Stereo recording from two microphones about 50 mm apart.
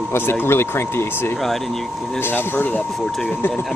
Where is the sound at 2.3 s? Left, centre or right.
Left.